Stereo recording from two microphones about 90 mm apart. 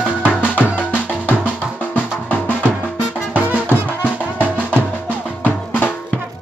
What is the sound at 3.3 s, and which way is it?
Music, 15° right (ahead or behind).